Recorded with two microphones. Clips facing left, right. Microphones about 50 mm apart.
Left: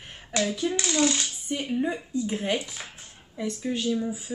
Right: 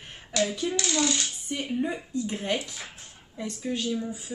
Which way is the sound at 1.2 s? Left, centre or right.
Centre.